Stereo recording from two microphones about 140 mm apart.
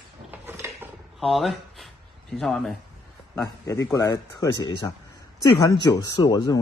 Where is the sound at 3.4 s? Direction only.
25° left (ahead or behind).